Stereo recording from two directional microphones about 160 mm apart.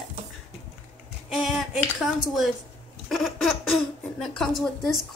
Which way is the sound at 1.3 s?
Centre (ahead or behind).